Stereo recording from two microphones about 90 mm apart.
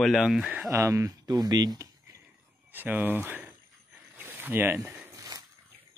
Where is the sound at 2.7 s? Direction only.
20° right (ahead or behind).